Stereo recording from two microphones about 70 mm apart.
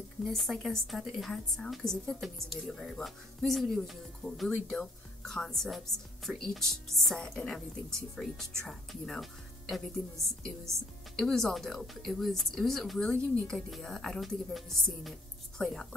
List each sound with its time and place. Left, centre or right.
0.2 s a woman's voice: centre